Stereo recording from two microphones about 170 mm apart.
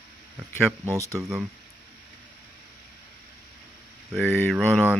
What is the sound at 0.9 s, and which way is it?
Speech, 15° right (ahead or behind).